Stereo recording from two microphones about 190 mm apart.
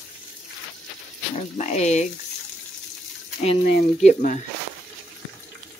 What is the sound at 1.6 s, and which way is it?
Speech, 35° left (ahead or behind).